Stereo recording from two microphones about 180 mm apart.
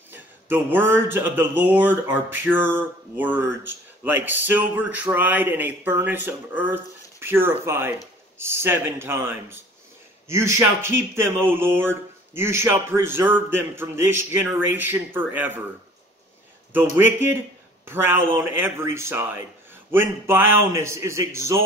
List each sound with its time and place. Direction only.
0.1 s speech: 10° right (ahead or behind)
16.9 s speech: 10° right (ahead or behind)